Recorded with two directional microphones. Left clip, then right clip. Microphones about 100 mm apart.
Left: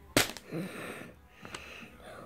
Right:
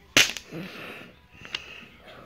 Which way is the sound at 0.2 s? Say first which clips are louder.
Right 10 dB; 5° left (ahead or behind).